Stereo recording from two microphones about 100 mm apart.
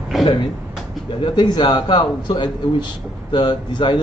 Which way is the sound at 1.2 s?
50° left (ahead or behind).